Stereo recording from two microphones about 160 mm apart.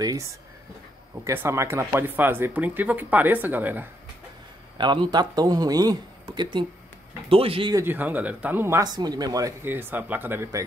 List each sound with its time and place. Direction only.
0.0 s speech: 20° right (ahead or behind)
4.7 s speech: 30° right (ahead or behind)
7.7 s speech: 15° right (ahead or behind)